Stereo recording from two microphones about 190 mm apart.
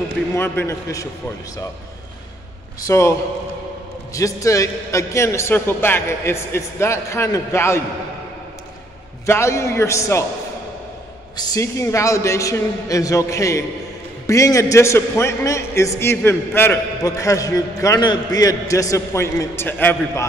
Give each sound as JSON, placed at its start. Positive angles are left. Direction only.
{"t": 0.3, "sound": "a man's voice", "side_deg": 15}
{"t": 2.9, "sound": "a man's voice", "side_deg": 15}
{"t": 9.2, "sound": "a man's voice", "side_deg": 15}
{"t": 11.3, "sound": "a man's voice", "side_deg": 15}